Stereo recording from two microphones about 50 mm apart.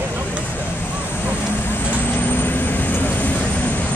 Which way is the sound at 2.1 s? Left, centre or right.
Left.